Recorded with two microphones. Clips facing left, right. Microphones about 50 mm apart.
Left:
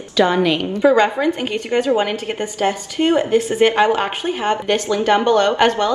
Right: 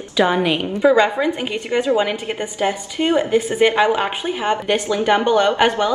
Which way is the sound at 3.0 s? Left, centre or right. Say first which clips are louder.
Left 2 dB; centre.